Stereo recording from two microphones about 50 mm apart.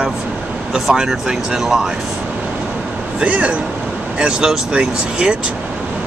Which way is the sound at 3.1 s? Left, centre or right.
Right.